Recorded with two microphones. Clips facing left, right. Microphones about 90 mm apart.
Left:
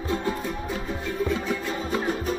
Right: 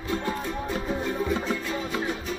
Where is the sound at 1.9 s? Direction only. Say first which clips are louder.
Left 3 dB; 45° left (ahead or behind).